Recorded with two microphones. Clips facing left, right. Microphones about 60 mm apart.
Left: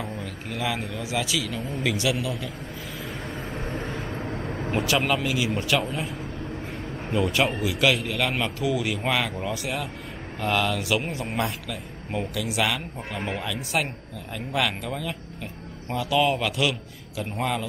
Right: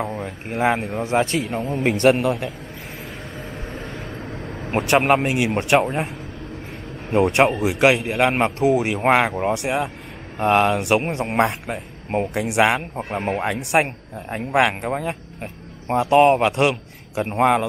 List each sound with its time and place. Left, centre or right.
0.1 s speech: right
0.6 s a man's voice: right
3.7 s vehicle: centre
4.6 s a man's voice: right
4.9 s a man's voice: right
7.1 s a man's voice: right
8.1 s a man's voice: right
9.5 s speech: right
10.4 s a man's voice: right
11.6 s a man's voice: right